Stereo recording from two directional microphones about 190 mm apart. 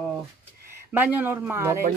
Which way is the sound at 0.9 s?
10° right (ahead or behind).